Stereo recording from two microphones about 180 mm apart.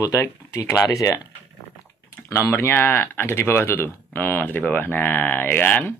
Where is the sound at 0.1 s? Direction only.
15° left (ahead or behind).